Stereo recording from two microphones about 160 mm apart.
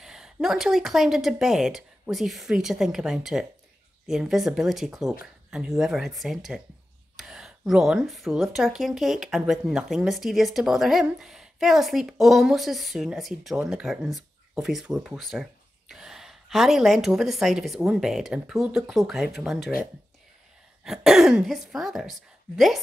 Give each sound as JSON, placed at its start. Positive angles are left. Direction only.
{"t": 0.0, "sound": "speech", "side_deg": -5}
{"t": 20.8, "sound": "speech", "side_deg": -5}